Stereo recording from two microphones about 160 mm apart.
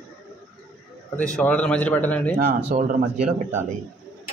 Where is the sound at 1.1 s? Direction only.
5° left (ahead or behind).